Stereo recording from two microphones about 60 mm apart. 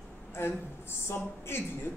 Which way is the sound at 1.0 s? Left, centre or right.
Left.